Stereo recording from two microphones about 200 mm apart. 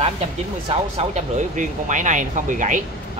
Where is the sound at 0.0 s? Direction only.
30° right (ahead or behind).